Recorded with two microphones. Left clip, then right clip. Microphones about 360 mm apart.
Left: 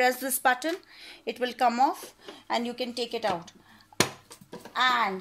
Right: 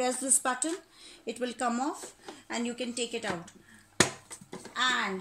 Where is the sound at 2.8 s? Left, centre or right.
Left.